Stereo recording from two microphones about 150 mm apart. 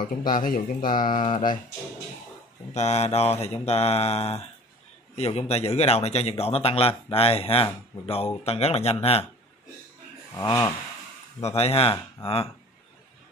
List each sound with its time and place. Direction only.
0.2 s speech: 65° left (ahead or behind)
2.7 s mantra: 50° left (ahead or behind)
5.1 s a man's voice: 45° left (ahead or behind)
8.5 s mantra: 45° left (ahead or behind)
10.4 s speech: 30° left (ahead or behind)
11.4 s speech: 45° left (ahead or behind)